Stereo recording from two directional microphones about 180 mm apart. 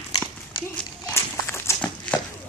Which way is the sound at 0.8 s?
10° left (ahead or behind).